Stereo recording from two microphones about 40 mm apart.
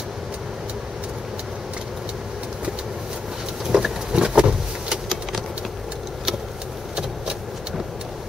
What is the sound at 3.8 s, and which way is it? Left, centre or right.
Patter, centre.